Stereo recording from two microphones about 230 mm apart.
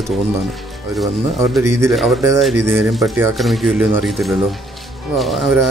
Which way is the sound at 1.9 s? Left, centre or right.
Centre.